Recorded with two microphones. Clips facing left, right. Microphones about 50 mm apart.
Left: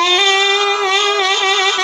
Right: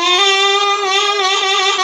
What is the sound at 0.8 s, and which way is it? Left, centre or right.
Music, centre.